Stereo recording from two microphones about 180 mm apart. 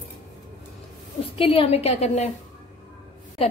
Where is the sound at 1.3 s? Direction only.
30° left (ahead or behind).